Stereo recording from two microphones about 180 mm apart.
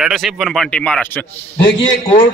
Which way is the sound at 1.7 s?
80° left.